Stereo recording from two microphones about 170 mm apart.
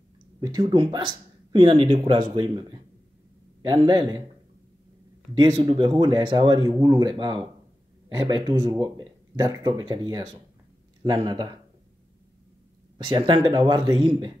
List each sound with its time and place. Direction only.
0.4 s speech: 25° right (ahead or behind)
5.3 s speech: 25° right (ahead or behind)
12.9 s speech: 25° right (ahead or behind)